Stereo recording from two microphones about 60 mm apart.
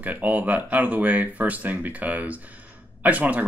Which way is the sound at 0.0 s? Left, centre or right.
Right.